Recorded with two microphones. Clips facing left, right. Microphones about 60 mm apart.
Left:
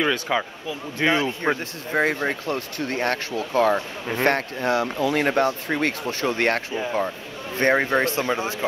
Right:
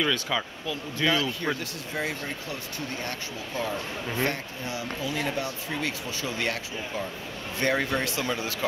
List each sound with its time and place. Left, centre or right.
0.0 s speech: left
7.5 s speech: left